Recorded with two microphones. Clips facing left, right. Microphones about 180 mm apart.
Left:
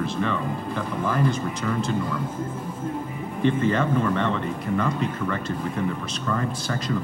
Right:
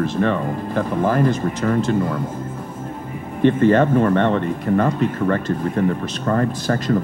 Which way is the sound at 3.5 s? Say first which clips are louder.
Right 8 dB; 55° right (ahead or behind).